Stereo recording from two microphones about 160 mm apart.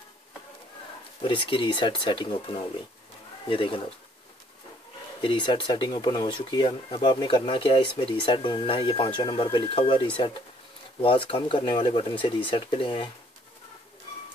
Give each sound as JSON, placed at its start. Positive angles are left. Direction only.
{"t": 1.2, "sound": "speech", "side_deg": 30}
{"t": 5.2, "sound": "speech", "side_deg": 30}